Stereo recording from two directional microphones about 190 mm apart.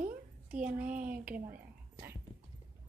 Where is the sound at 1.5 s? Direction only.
10° right (ahead or behind).